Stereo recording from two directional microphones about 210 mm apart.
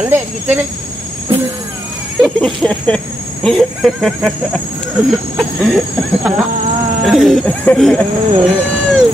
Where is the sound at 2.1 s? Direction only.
Centre (ahead or behind).